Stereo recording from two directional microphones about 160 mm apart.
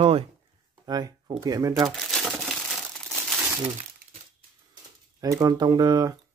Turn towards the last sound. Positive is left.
turn(degrees=-25)  # may be behind; listen again after turning